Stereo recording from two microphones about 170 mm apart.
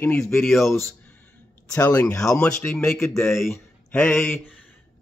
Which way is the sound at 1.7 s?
20° left (ahead or behind).